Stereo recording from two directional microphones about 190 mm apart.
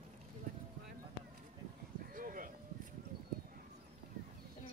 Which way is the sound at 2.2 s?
45° right (ahead or behind).